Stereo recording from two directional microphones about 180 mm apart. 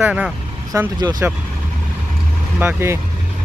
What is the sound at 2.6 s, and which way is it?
Speech, 10° right (ahead or behind).